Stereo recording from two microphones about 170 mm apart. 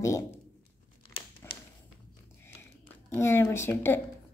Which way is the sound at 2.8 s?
15° left (ahead or behind).